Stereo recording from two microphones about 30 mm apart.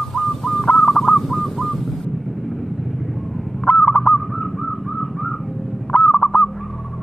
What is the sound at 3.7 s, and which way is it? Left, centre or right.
Honk, left.